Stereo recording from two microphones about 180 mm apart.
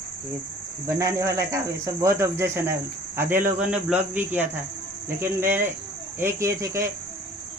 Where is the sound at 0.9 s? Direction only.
15° right (ahead or behind).